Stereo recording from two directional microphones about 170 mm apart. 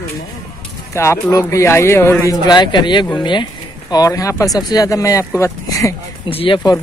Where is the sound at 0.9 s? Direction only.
15° left (ahead or behind).